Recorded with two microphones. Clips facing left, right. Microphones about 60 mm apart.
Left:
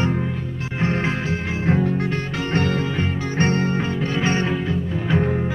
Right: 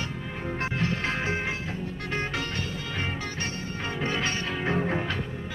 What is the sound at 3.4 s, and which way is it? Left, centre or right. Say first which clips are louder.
Music: left 14 dB; left.